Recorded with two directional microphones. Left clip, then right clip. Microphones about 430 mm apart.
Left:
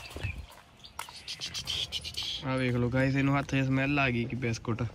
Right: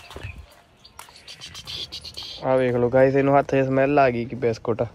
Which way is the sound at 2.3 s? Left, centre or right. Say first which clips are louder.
Right 13 dB; centre.